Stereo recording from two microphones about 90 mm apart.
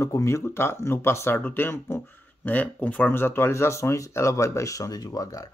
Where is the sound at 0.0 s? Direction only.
35° left (ahead or behind).